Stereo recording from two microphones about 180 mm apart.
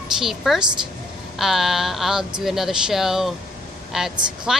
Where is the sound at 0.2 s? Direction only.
Centre (ahead or behind).